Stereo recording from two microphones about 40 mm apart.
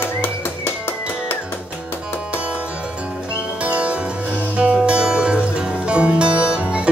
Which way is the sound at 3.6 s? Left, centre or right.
Right.